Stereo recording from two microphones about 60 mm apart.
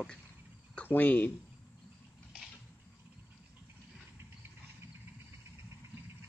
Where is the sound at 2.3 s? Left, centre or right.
Centre.